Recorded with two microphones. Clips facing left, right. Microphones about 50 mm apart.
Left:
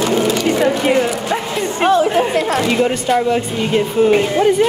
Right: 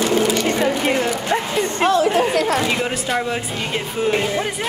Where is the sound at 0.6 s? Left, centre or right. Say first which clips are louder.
Left 4 dB; centre.